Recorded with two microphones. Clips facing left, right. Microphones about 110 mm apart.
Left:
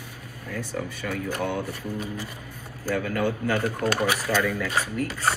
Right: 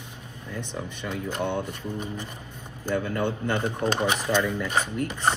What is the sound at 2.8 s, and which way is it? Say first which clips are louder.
A man's voice: left 1 dB; 20° right (ahead or behind).